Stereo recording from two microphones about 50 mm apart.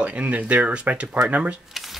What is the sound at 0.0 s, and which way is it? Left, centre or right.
Speech, right.